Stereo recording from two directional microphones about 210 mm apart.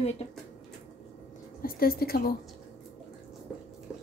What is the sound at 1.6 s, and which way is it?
Speech, 45° left (ahead or behind).